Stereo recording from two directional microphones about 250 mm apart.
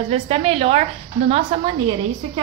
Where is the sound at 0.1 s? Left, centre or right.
Right.